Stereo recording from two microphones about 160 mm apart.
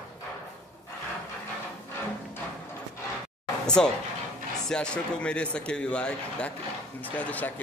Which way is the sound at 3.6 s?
5° left (ahead or behind).